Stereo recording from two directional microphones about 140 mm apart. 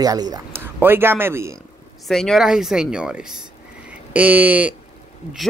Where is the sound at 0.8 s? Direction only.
15° right (ahead or behind).